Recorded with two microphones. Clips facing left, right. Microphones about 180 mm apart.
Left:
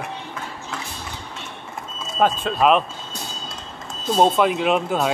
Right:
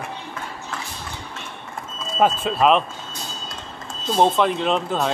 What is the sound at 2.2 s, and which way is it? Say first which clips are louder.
Speech: even; 5° right (ahead or behind).